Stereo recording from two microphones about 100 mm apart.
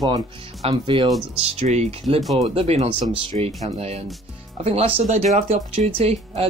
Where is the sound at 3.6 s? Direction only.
90° right.